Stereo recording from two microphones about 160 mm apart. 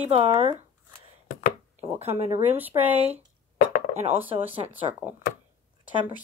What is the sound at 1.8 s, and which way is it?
Speech, 40° right (ahead or behind).